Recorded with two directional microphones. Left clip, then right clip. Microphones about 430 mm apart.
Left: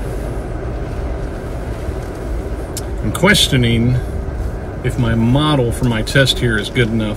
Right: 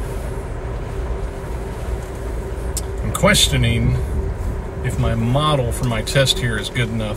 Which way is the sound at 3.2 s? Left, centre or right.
Centre.